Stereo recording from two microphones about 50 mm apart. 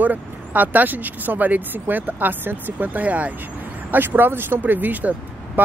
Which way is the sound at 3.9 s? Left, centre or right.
Right.